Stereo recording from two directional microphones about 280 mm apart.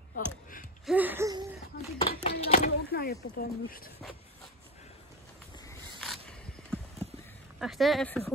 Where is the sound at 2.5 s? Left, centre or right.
Left.